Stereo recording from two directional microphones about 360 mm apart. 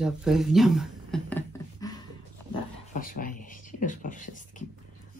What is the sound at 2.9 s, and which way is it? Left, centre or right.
Beatboxing, left.